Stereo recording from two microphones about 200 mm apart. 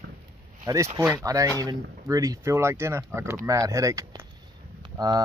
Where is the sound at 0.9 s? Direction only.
15° right (ahead or behind).